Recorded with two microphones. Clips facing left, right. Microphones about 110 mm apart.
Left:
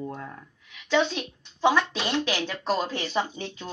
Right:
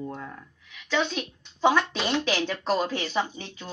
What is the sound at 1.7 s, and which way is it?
Speech, centre (ahead or behind).